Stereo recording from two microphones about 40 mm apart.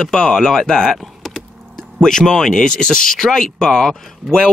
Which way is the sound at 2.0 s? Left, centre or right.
Centre.